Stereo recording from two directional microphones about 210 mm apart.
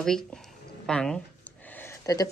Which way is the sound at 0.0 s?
Centre (ahead or behind).